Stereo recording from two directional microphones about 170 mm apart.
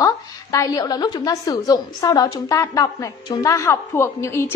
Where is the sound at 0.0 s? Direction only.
20° left (ahead or behind).